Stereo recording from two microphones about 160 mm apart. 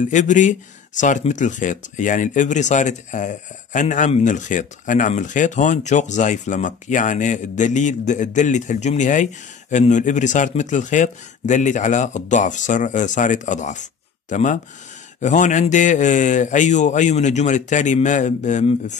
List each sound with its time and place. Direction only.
0.0 s speech: 50° left (ahead or behind)